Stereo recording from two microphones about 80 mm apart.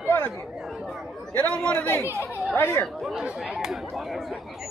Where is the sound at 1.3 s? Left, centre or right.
Centre.